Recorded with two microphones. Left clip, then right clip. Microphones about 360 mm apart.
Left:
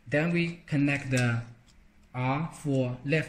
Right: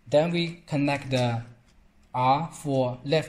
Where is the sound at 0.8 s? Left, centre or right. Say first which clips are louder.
Right 3 dB; right.